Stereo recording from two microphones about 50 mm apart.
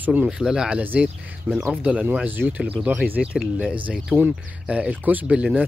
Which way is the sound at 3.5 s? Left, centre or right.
Right.